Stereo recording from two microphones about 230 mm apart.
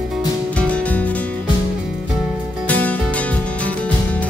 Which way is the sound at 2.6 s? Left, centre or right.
Centre.